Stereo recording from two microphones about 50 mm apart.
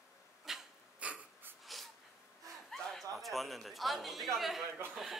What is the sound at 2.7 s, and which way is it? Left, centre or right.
Speech, centre.